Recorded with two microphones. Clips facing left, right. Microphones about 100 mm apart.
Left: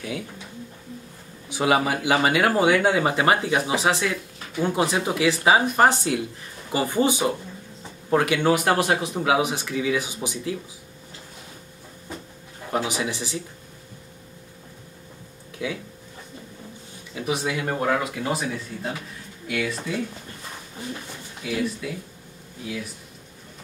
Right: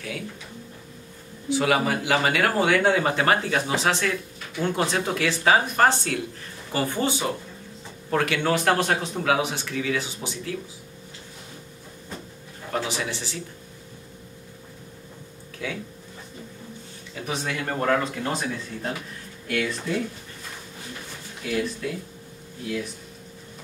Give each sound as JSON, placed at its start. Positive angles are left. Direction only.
{"t": 1.5, "sound": "speech", "side_deg": 20}
{"t": 12.7, "sound": "speech", "side_deg": 15}
{"t": 15.6, "sound": "speech", "side_deg": 15}
{"t": 17.1, "sound": "speech", "side_deg": 10}
{"t": 21.5, "sound": "speech", "side_deg": 5}